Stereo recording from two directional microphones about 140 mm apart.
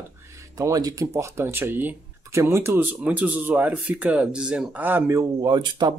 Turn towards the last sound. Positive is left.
turn(degrees=-30)  # may be behind; listen again after turning